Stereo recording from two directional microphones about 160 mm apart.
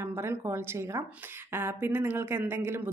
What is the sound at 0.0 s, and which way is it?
Speech, 15° right (ahead or behind).